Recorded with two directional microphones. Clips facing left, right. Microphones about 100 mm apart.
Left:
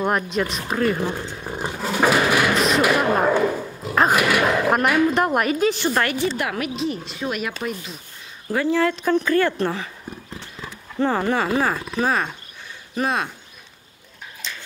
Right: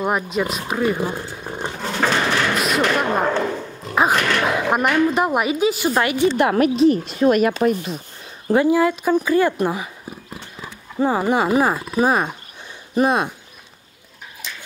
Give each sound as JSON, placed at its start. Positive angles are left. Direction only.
{"t": 0.0, "sound": "speech", "side_deg": -5}
{"t": 1.6, "sound": "roaring cats", "side_deg": 5}
{"t": 2.5, "sound": "a sound", "side_deg": -5}
{"t": 2.8, "sound": "speech", "side_deg": 5}
{"t": 4.5, "sound": "a woman's voice", "side_deg": 0}
{"t": 6.4, "sound": "speech", "side_deg": -35}
{"t": 6.8, "sound": "speech", "side_deg": -50}
{"t": 8.6, "sound": "speech", "side_deg": -10}
{"t": 10.3, "sound": "horse", "side_deg": -10}
{"t": 11.8, "sound": "speech", "side_deg": -15}
{"t": 14.4, "sound": "dog", "side_deg": -10}